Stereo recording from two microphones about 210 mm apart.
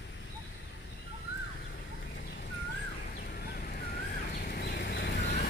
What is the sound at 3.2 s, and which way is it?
Bird, 45° left (ahead or behind).